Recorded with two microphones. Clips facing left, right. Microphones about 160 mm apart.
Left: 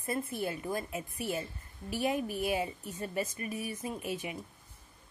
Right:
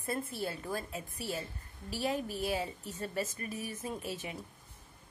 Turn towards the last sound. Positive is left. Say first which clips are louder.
# left 2 dB
turn(degrees=10)  # may be behind; listen again after turning